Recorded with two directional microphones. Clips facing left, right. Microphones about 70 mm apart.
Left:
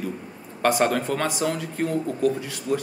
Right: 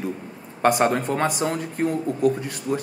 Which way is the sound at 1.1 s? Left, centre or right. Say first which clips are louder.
Right 2 dB; right.